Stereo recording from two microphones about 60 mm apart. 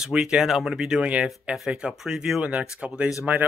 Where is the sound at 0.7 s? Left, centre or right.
Centre.